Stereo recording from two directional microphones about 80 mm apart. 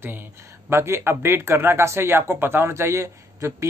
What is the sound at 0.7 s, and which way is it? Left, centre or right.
Speech, right.